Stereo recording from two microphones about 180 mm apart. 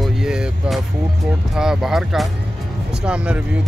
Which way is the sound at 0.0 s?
5° right (ahead or behind).